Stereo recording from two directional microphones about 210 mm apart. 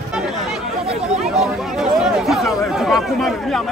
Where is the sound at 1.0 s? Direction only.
5° right (ahead or behind).